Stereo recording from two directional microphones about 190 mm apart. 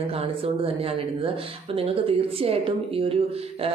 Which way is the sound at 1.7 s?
30° right (ahead or behind).